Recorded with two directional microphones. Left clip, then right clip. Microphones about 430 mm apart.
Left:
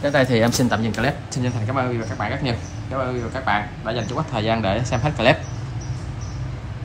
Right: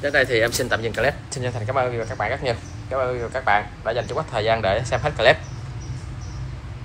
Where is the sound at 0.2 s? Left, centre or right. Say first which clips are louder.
Left 1 dB; centre.